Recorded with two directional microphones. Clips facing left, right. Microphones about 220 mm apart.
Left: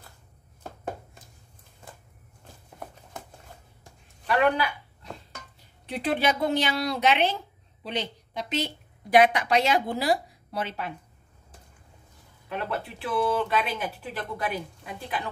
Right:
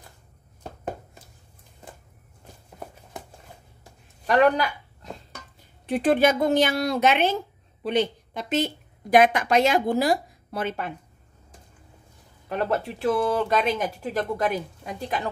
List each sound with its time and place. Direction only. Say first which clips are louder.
4.3 s speech: right 4 dB; 40° right (ahead or behind)
5.9 s speech: right 6 dB; 50° right (ahead or behind)
12.4 s speech: right 6 dB; 45° right (ahead or behind)